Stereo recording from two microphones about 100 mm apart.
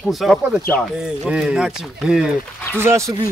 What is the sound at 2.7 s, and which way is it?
Speech, 25° right (ahead or behind).